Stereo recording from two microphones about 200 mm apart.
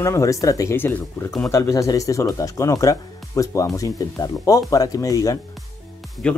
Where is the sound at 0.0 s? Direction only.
15° left (ahead or behind).